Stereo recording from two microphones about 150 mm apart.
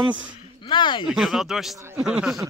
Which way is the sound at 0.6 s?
30° left (ahead or behind).